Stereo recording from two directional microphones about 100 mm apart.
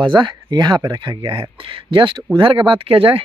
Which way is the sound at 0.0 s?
50° right (ahead or behind).